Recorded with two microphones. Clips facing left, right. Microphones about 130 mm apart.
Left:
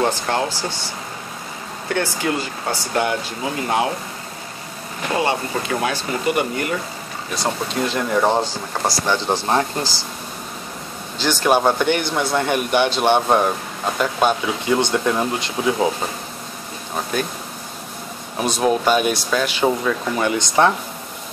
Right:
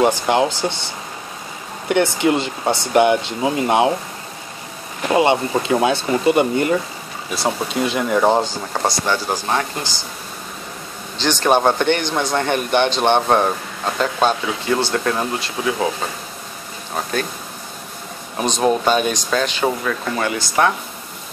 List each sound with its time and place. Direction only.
0.0 s speech: 15° right (ahead or behind)
1.9 s speech: 20° right (ahead or behind)
5.1 s speech: 20° right (ahead or behind)
7.3 s speech: 5° right (ahead or behind)
9.0 s speech: 15° left (ahead or behind)
11.1 s speech: 10° left (ahead or behind)
18.4 s speech: 5° left (ahead or behind)